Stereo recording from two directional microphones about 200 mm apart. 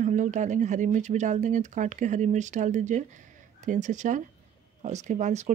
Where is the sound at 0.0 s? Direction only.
40° right (ahead or behind).